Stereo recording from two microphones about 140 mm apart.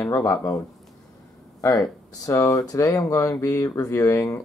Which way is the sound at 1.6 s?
25° left (ahead or behind).